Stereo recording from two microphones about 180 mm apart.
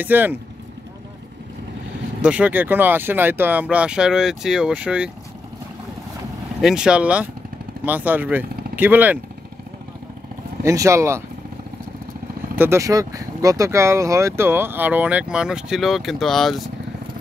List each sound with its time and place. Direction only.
0.0 s speech: 10° right (ahead or behind)
2.2 s speech: 5° right (ahead or behind)
6.6 s speech: 5° right (ahead or behind)
10.6 s speech: 15° right (ahead or behind)
12.5 s speech: 15° right (ahead or behind)